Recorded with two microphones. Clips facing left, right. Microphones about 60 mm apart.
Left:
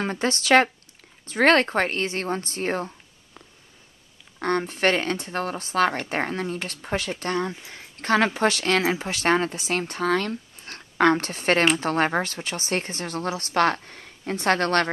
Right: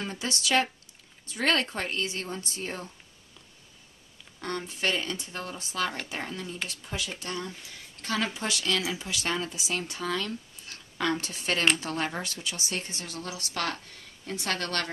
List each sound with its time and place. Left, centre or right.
0.0 s speech: left
4.4 s speech: left